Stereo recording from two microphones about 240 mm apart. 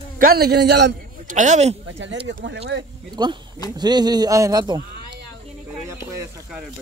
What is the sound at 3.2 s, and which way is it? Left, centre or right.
Speech, centre.